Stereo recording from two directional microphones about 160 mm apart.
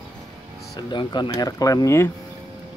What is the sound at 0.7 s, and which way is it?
Speech, 30° left (ahead or behind).